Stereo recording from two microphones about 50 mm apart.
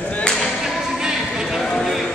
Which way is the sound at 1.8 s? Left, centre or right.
Centre.